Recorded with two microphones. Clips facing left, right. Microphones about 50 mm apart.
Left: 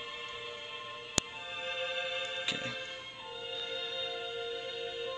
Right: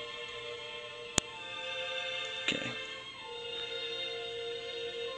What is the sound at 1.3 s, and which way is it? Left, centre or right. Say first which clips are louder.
Music: left 1 dB; centre.